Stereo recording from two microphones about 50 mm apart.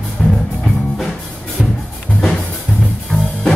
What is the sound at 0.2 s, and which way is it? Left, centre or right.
Music, centre.